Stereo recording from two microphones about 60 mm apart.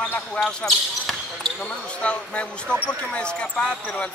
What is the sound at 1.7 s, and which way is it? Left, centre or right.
Speech, centre.